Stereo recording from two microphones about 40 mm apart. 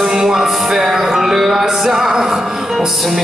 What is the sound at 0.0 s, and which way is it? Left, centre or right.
Music, centre.